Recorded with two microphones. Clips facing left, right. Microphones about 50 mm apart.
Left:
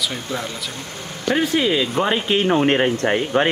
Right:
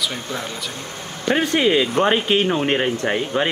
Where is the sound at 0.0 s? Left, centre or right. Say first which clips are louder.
Left 1 dB; centre.